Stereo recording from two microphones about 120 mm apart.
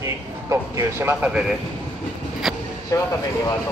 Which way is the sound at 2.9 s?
30° left (ahead or behind).